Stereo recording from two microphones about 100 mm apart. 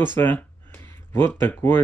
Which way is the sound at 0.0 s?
20° left (ahead or behind).